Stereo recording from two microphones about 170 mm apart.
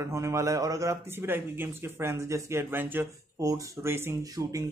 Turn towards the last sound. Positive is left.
turn(degrees=-15)  # may be behind; listen again after turning